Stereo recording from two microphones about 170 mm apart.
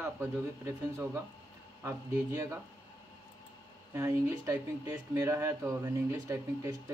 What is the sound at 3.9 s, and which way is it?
Speech, 15° right (ahead or behind).